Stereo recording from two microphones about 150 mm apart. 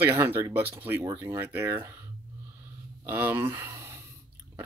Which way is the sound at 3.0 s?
15° right (ahead or behind).